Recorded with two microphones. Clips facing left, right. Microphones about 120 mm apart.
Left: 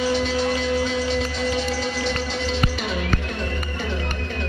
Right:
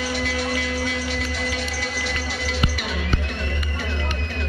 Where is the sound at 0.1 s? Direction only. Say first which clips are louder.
Left 4 dB; 25° left (ahead or behind).